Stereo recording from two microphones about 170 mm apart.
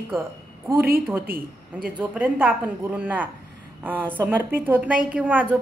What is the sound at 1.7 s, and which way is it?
A woman's voice, 10° right (ahead or behind).